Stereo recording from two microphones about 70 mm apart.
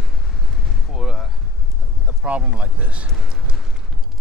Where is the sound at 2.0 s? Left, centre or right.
Centre.